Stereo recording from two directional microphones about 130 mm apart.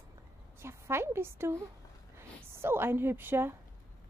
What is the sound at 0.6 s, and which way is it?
A woman's voice, 20° right (ahead or behind).